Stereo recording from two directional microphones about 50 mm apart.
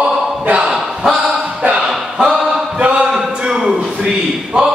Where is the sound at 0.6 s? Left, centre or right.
Centre.